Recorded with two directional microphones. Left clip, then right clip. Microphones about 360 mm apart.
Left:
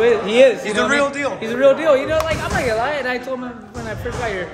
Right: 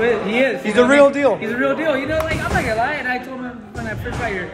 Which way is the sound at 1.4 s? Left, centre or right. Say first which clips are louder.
Left 5 dB; centre.